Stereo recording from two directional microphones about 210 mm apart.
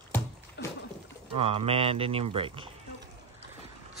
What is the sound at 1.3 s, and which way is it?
Speech, 30° right (ahead or behind).